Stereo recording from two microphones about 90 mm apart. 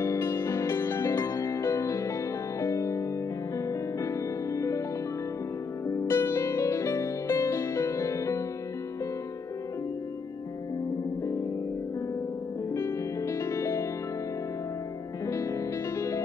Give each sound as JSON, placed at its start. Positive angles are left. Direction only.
{"t": 0.0, "sound": "music", "side_deg": 30}
{"t": 5.9, "sound": "music", "side_deg": 30}
{"t": 12.7, "sound": "music", "side_deg": 30}
{"t": 15.2, "sound": "music", "side_deg": 35}